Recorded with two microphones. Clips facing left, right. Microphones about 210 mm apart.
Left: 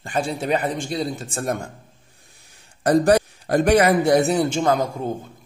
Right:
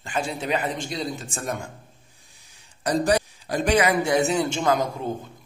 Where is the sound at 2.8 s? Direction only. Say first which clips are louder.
Left 6 dB; 55° left (ahead or behind).